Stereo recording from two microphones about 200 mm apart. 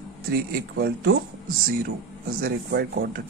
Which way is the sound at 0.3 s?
50° right (ahead or behind).